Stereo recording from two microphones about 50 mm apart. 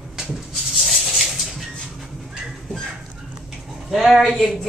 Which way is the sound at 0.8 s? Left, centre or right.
Centre.